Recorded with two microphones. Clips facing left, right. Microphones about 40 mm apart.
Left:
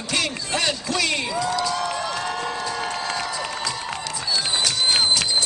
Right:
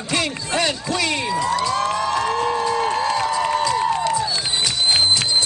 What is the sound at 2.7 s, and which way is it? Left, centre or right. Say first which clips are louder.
Crowd: right 7 dB; right.